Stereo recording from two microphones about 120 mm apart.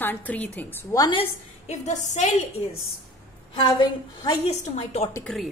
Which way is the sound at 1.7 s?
75° left (ahead or behind).